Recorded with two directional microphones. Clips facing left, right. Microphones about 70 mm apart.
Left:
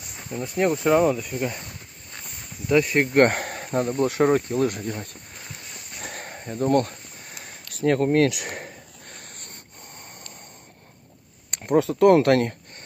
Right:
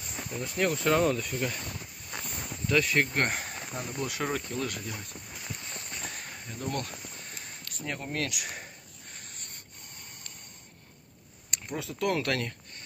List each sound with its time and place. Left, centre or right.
0.4 s speech: left
2.2 s a sound: centre
2.6 s speech: left
3.2 s speech: left
5.9 s a sound: left
7.7 s speech: left
11.5 s speech: left